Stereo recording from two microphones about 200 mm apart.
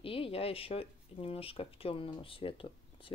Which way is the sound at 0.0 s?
25° left (ahead or behind).